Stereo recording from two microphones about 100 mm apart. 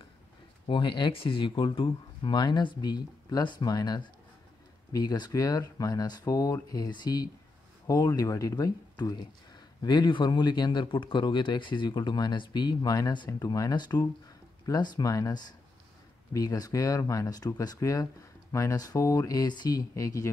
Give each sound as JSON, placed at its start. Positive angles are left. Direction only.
{"t": 0.7, "sound": "speech", "side_deg": 55}